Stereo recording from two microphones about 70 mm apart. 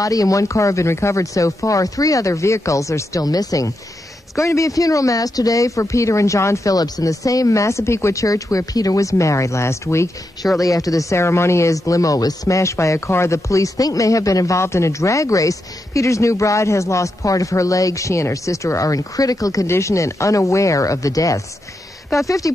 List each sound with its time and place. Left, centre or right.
0.0 s speech: left
4.4 s speech: left
6.7 s speech: left
10.6 s speech: left
19.7 s speech: left